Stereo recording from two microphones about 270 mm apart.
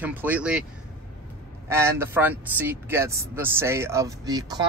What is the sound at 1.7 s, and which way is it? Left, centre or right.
Speech, centre.